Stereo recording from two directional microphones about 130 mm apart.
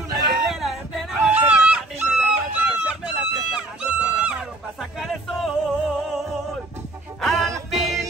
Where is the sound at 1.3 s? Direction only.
10° right (ahead or behind).